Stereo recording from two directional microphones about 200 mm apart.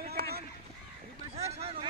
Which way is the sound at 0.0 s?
50° right (ahead or behind).